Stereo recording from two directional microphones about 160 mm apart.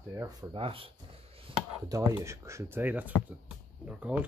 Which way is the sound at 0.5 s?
35° right (ahead or behind).